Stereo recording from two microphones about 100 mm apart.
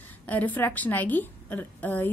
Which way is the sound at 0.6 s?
20° left (ahead or behind).